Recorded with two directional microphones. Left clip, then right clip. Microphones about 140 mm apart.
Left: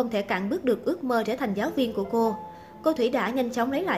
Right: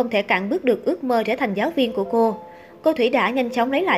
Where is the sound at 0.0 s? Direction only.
15° right (ahead or behind).